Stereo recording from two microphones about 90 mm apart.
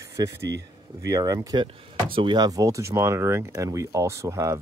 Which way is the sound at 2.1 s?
75° right (ahead or behind).